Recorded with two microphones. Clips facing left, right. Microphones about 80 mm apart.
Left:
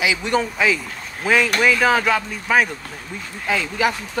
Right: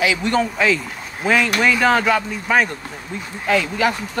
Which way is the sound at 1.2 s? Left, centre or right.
Centre.